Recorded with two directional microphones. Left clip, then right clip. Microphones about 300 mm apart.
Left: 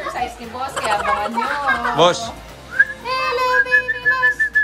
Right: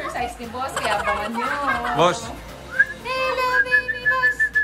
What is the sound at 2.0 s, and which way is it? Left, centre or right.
Speech, centre.